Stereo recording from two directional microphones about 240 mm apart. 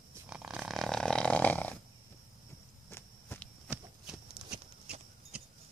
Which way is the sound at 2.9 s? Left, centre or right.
Centre.